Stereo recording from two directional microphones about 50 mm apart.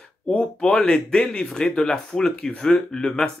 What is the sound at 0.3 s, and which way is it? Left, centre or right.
Speech, centre.